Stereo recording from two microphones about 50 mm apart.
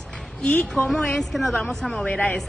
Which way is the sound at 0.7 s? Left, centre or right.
Centre.